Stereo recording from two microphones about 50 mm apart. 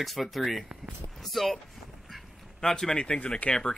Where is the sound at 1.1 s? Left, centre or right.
Centre.